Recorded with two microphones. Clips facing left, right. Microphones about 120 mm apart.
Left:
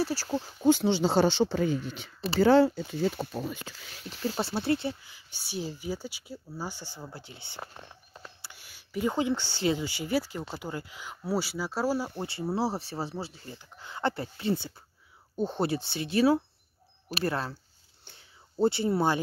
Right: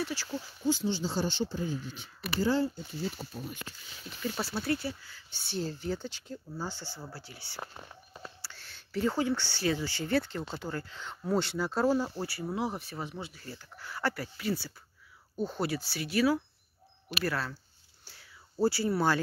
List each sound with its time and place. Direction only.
0.0 s speech: 40° left (ahead or behind); by 3.9 s 80° left
4.2 s speech: 30° left (ahead or behind)
7.7 s a sound: 5° right (ahead or behind)
8.4 s speech: 15° left (ahead or behind)
12.2 s speech: 25° left (ahead or behind)
18.0 s whispering: 25° left (ahead or behind)